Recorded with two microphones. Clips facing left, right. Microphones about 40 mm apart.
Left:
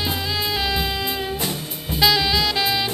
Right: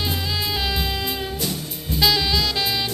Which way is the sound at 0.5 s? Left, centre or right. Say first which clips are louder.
Left 3 dB; centre.